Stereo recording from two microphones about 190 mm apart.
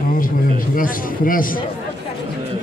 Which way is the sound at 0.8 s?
45° left (ahead or behind).